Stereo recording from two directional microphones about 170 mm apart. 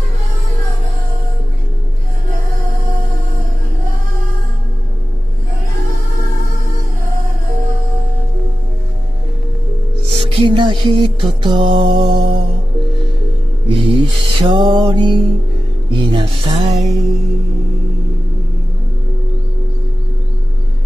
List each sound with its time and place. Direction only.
10.0 s music: 35° right (ahead or behind)
13.7 s music: 30° right (ahead or behind)
16.8 s music: centre (ahead or behind)